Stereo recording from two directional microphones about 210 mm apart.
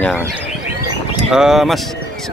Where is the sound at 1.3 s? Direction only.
Centre (ahead or behind).